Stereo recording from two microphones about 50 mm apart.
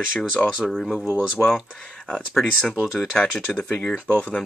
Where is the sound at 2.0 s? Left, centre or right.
Centre.